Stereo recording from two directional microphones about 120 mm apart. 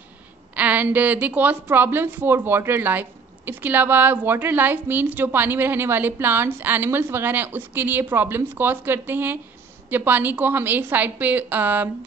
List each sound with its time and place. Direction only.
0.6 s a woman's voice: 15° right (ahead or behind)